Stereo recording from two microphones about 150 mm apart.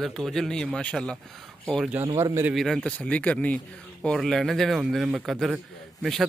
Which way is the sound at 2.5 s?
Centre (ahead or behind).